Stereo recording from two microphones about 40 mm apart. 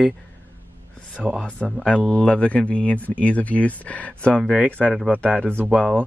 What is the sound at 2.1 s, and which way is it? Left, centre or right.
Speech, left.